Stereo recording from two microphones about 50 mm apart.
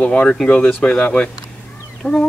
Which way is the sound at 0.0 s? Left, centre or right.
Left.